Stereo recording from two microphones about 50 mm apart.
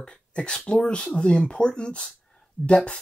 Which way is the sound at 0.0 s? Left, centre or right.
Centre.